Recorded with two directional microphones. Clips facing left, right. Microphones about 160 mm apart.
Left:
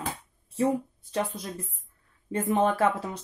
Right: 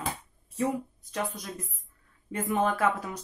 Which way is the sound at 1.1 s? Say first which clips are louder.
Left 3 dB; 30° left (ahead or behind).